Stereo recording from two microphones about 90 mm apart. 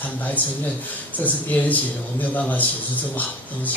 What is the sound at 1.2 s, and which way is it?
A man's voice, 20° left (ahead or behind).